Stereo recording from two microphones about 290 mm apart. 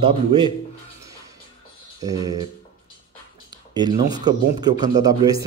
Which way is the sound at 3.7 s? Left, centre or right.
Centre.